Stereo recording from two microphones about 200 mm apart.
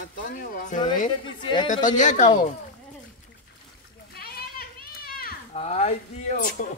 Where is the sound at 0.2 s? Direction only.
45° left (ahead or behind).